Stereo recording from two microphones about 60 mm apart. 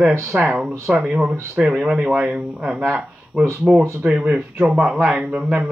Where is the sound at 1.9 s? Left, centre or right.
Right.